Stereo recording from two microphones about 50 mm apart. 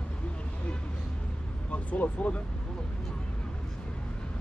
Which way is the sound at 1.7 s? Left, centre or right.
Left.